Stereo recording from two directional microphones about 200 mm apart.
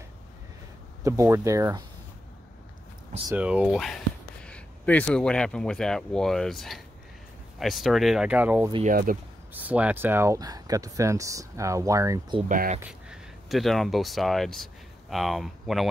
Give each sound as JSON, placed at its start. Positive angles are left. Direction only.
{"t": 1.0, "sound": "speech", "side_deg": -15}
{"t": 3.3, "sound": "speech", "side_deg": -5}
{"t": 8.8, "sound": "speech", "side_deg": -40}
{"t": 9.5, "sound": "speech", "side_deg": -10}
{"t": 12.4, "sound": "speech", "side_deg": -40}
{"t": 12.8, "sound": "speech", "side_deg": 0}